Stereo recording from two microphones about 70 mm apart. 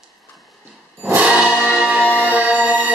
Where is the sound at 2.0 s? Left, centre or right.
Left.